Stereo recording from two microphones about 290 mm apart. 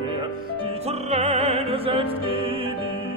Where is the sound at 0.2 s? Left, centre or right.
Centre.